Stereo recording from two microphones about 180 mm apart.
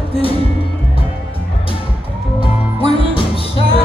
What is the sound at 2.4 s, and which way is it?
Music, 30° left (ahead or behind).